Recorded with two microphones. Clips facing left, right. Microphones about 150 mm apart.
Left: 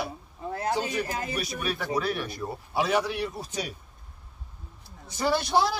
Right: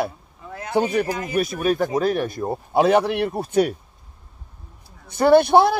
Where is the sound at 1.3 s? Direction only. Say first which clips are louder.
Right 11 dB; 50° right (ahead or behind).